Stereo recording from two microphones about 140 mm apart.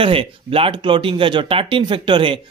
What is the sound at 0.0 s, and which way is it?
Speech, 40° right (ahead or behind).